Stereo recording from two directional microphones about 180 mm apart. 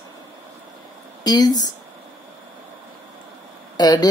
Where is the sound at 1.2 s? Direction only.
20° left (ahead or behind).